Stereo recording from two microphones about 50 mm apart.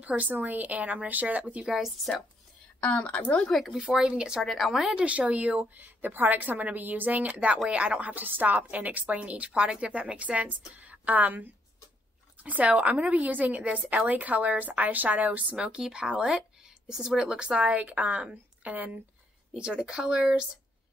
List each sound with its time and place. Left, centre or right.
0.0 s a woman's voice: right
1.7 s a woman's voice: centre
2.8 s a woman's voice: left
3.4 s a woman's voice: centre
3.7 s speech: centre
4.0 s a woman's voice: centre
4.4 s a woman's voice: centre
4.8 s a woman's voice: right
15.5 s a woman's voice: centre